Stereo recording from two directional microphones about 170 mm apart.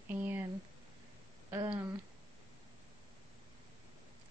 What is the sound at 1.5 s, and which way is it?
Speech, 25° right (ahead or behind).